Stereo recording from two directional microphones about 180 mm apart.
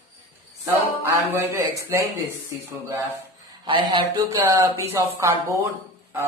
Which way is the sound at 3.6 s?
25° right (ahead or behind).